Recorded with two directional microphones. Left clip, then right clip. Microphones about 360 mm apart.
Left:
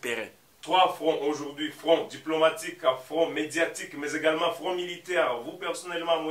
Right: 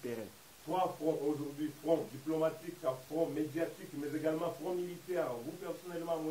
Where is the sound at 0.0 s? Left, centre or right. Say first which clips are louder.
Left 10 dB; centre.